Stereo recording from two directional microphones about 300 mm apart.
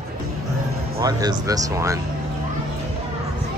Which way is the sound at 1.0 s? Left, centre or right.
Centre.